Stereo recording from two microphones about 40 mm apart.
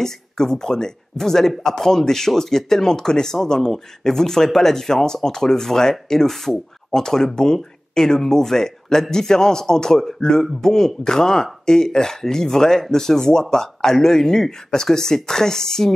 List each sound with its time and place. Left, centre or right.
0.0 s speech: centre